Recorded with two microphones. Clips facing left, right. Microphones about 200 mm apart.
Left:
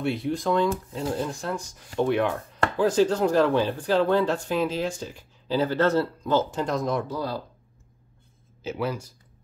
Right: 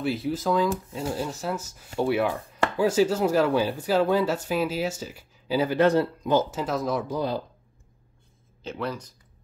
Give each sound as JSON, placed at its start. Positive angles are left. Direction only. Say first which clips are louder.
{"t": 0.0, "sound": "speech", "louder": "even", "side_deg": 0}
{"t": 6.5, "sound": "speech", "louder": "left 1 dB", "side_deg": -5}
{"t": 7.1, "sound": "speech", "louder": "right 3 dB", "side_deg": -20}
{"t": 8.6, "sound": "speech", "louder": "left 3 dB", "side_deg": 5}